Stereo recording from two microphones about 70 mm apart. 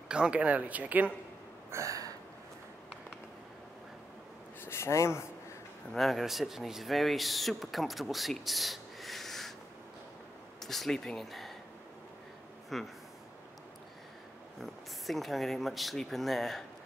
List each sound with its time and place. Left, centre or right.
0.1 s speech: centre
1.7 s a sound: right
4.6 s speech: left
5.9 s speech: centre
10.6 s speech: centre
12.7 s speech: centre
14.6 s speech: centre